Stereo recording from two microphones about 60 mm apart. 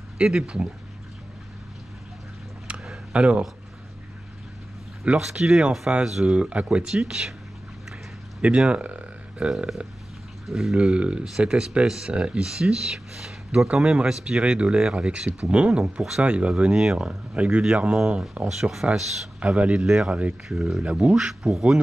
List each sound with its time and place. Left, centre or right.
0.2 s speech: centre
2.7 s a sound: centre
3.1 s speech: centre
5.1 s speech: centre
8.5 s a sound: centre
10.4 s speech: centre
14.4 s speech: centre
15.8 s speech: centre
16.3 s speech: centre
18.5 s speech: centre
19.4 s speech: right
20.4 s speech: centre